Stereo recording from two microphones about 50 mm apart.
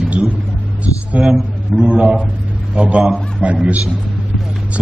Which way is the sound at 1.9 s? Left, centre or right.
Right.